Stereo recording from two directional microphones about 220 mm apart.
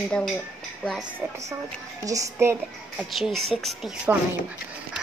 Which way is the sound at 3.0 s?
Centre (ahead or behind).